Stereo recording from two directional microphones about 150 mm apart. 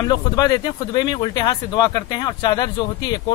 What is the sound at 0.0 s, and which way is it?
Speech, 25° left (ahead or behind).